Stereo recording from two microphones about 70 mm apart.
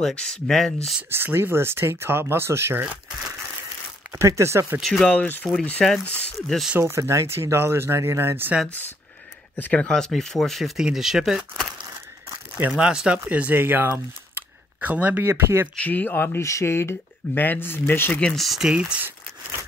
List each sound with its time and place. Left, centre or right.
0.0 s speech: centre
1.1 s speech: right
4.4 s speech: right
4.8 s speech: centre
5.1 s speech: left
6.8 s speech: right
9.6 s speech: centre
10.6 s speech: centre
12.7 s speech: centre
13.2 s speech: right
15.7 s speech: left
17.3 s speech: left
18.4 s speech: centre
18.7 s speech: centre